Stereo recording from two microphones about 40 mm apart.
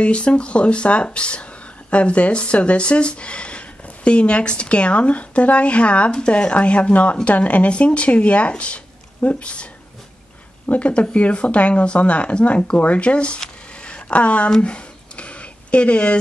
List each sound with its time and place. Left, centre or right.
0.0 s speech: left
10.7 s speech: left
13.8 s a sound: left